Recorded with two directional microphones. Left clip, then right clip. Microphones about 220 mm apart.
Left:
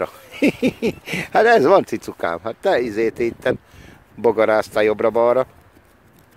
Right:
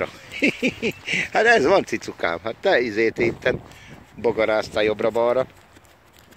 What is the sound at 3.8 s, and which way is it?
Speech, 30° left (ahead or behind).